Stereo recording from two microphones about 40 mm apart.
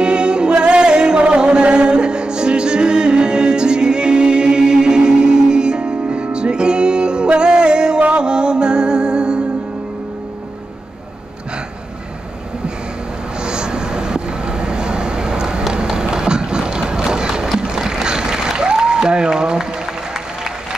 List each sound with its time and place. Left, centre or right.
0.0 s music: right
13.4 s vehicle: right
17.6 s a sound: centre